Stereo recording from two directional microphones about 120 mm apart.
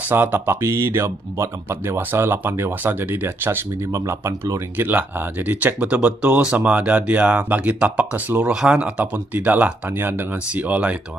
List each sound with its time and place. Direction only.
0.0 s speech: 15° right (ahead or behind)
4.8 s speech: 15° right (ahead or behind)